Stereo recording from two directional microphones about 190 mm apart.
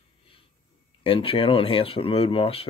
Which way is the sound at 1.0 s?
30° left (ahead or behind).